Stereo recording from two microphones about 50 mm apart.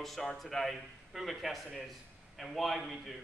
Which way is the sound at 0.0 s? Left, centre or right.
Centre.